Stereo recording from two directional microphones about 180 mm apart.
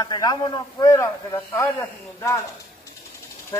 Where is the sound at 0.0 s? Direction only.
20° left (ahead or behind).